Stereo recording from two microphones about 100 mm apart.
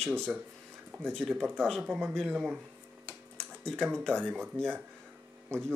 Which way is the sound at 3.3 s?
10° left (ahead or behind).